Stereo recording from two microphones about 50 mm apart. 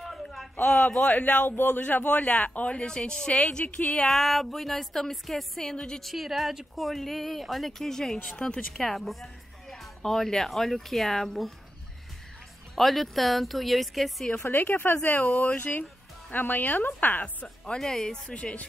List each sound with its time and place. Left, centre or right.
0.0 s a sound: centre
0.6 s speech: centre
1.1 s speech: left
4.1 s speech: centre
5.6 s speech: centre
6.0 s speech: centre
8.7 s speech: centre
12.7 s speech: centre
14.4 s speech: left
15.1 s speech: left
17.6 s speech: centre